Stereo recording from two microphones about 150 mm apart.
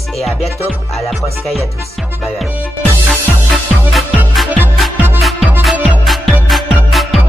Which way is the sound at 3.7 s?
Centre (ahead or behind).